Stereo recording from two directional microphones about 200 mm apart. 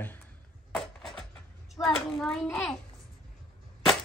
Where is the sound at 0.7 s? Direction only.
Centre (ahead or behind).